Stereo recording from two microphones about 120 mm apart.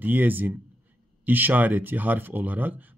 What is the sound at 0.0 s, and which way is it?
Speech, 15° right (ahead or behind).